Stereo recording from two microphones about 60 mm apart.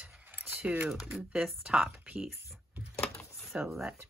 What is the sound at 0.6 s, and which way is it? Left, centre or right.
Speech, right.